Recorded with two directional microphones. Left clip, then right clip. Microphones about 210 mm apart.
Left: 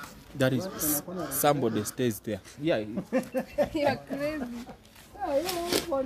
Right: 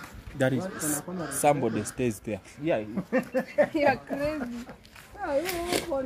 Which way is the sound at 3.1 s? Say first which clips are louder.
Right 3 dB; 35° right (ahead or behind).